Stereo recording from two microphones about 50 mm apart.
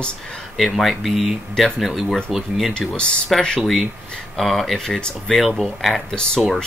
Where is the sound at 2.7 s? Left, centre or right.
Centre.